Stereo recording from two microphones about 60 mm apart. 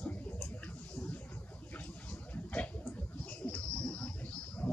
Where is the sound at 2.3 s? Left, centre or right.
Left.